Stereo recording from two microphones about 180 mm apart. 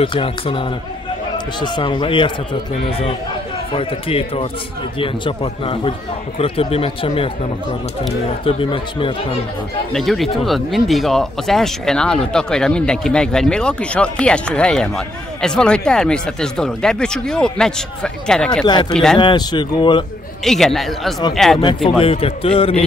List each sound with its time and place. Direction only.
0.0 s speech: 30° left (ahead or behind)
8.5 s speech: 30° left (ahead or behind)
9.9 s speech: centre (ahead or behind)
18.7 s speech: 25° left (ahead or behind)
20.4 s speech: centre (ahead or behind)
22.0 s speech: 30° left (ahead or behind)